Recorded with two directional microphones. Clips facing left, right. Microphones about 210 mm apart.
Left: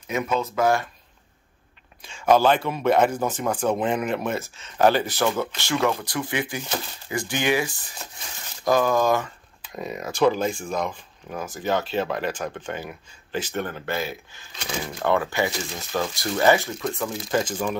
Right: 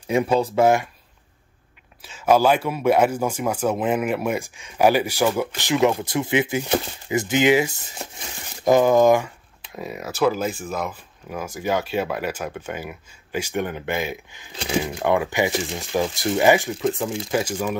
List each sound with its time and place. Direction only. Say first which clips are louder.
0.0 s speech: right 6 dB; 30° right (ahead or behind)
2.0 s speech: right 1 dB; 5° right (ahead or behind)
9.8 s speech: even; 5° right (ahead or behind); by 17.2 s 20° right (ahead or behind)
17.3 s speech: even; 10° right (ahead or behind)